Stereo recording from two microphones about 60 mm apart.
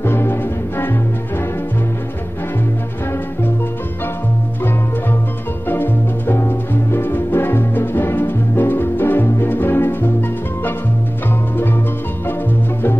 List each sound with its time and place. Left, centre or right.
0.0 s music: left
5.7 s music: left